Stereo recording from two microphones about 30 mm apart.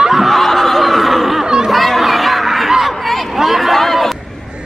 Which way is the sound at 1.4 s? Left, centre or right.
Centre.